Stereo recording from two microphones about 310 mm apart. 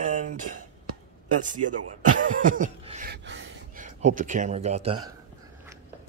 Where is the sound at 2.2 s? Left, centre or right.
Right.